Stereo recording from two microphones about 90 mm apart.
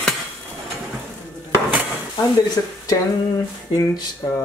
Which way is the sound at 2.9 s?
40° left (ahead or behind).